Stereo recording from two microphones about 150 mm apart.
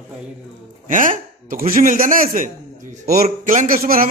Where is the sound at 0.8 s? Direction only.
60° right (ahead or behind).